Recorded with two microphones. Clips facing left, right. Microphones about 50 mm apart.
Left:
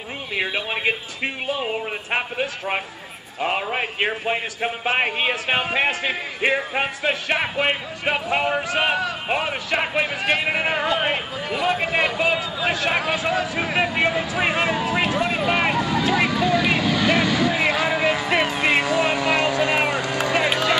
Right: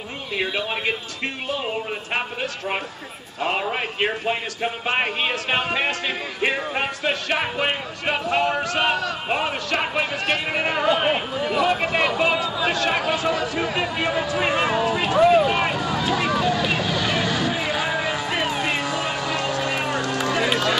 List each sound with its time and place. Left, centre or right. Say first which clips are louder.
0.4 s a man's voice: left 1 dB; centre
15.7 s vehicle: left 2 dB; centre
16.7 s music: left 3 dB; centre
17.8 s music: left 3 dB; centre
18.6 s a sound: left 4 dB; left
18.9 s vehicle: left 5 dB; centre
19.6 s vehicle: left 3 dB; left